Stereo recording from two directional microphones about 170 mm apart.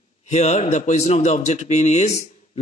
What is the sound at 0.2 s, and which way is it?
Speech, 40° left (ahead or behind).